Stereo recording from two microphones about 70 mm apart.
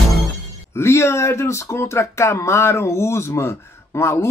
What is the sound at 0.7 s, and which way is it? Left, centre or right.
Speech, left.